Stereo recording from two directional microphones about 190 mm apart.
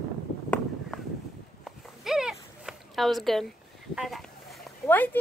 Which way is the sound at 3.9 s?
Centre (ahead or behind).